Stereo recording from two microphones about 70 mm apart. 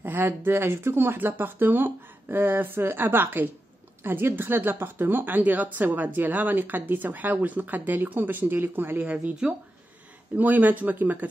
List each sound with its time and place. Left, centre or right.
0.0 s speech: right
9.0 s speech: right
10.3 s speech: right